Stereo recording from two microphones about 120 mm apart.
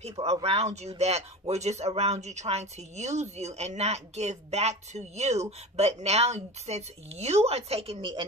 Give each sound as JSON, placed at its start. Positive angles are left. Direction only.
{"t": 0.2, "sound": "speech", "side_deg": -60}